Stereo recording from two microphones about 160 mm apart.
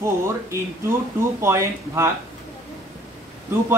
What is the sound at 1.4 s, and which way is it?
Speech, 15° right (ahead or behind).